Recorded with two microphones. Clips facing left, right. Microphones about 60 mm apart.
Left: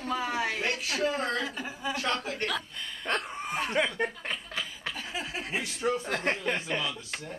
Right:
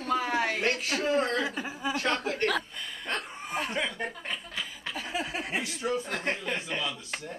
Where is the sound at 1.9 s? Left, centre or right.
Right.